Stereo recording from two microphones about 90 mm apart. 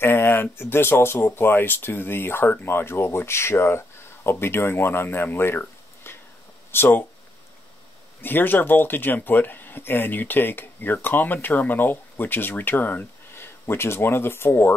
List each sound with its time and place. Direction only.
0.0 s speech: 25° left (ahead or behind)
8.2 s speech: 20° left (ahead or behind)